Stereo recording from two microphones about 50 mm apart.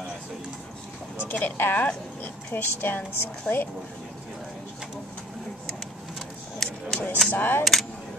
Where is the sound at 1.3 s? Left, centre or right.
Left.